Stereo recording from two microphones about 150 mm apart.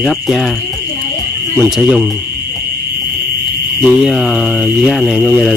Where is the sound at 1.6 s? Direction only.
Centre (ahead or behind).